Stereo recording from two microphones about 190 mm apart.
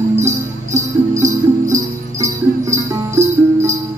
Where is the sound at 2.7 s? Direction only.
15° right (ahead or behind).